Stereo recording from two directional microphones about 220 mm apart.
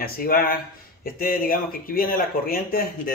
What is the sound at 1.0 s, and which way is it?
Speech, 40° left (ahead or behind).